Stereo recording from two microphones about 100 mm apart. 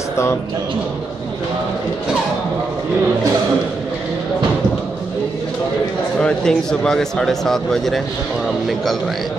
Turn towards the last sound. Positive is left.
turn(degrees=5)  # may be behind; listen again after turning